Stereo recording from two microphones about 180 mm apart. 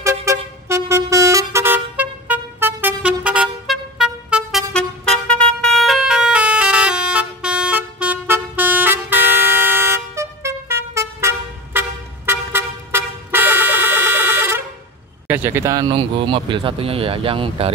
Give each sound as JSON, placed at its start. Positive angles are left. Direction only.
{"t": 0.0, "sound": "vehicle", "side_deg": -15}
{"t": 15.2, "sound": "speech", "side_deg": -10}